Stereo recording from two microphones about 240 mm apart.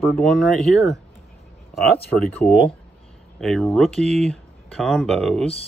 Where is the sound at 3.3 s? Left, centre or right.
Centre.